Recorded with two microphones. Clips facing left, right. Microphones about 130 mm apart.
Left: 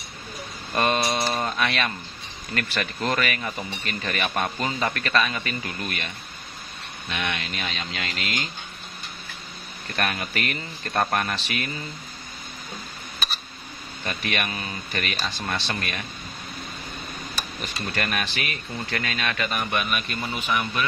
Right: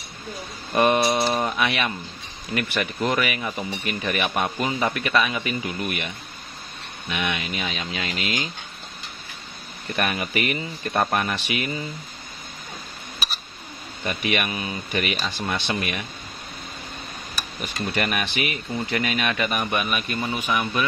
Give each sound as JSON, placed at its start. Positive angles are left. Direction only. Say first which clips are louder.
{"t": 0.7, "sound": "speech", "louder": "right 4 dB", "side_deg": -15}
{"t": 9.9, "sound": "speech", "louder": "right 3 dB", "side_deg": -15}
{"t": 14.0, "sound": "speech", "louder": "right 3 dB", "side_deg": -15}
{"t": 17.9, "sound": "speech", "louder": "right 3 dB", "side_deg": -15}